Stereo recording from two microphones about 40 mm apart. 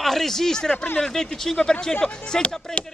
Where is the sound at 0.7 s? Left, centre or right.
Left.